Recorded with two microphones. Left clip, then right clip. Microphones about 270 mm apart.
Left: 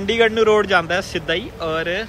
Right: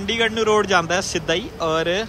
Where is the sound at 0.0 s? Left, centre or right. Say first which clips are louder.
Left 4 dB; centre.